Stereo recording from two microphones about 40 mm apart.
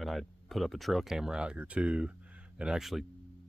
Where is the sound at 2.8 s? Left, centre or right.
Centre.